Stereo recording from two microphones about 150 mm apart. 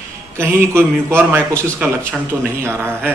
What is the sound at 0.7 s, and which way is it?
A man's voice, 15° right (ahead or behind).